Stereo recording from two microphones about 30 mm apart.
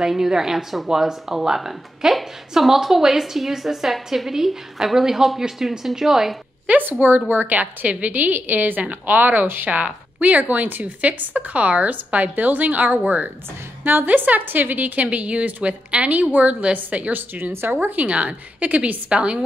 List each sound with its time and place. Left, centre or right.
0.0 s a woman's voice: centre
6.8 s a woman's voice: right
13.8 s a woman's voice: right
15.0 s a woman's voice: right
16.3 s speech: right
16.7 s a woman's voice: right
17.1 s speech: right
18.0 s a woman's voice: right